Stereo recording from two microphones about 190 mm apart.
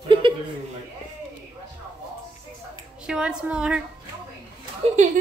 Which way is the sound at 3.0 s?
5° right (ahead or behind).